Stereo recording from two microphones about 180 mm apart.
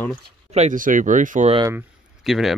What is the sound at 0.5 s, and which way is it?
Speech, 40° right (ahead or behind).